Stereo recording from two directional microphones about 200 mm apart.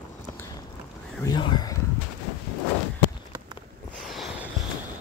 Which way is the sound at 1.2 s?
20° left (ahead or behind).